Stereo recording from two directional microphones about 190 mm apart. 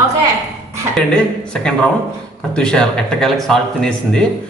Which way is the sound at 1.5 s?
5° left (ahead or behind).